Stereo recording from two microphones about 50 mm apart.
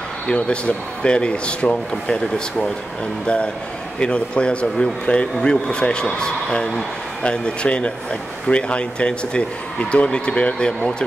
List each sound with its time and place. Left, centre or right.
0.3 s speech: left
4.0 s speech: left